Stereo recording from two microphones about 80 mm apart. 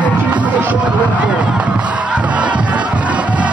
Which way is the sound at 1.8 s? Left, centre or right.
Centre.